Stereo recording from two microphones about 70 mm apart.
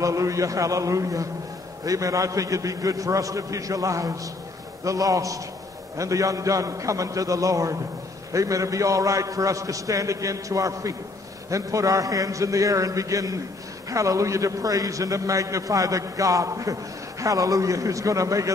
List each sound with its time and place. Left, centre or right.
0.0 s a man's voice: right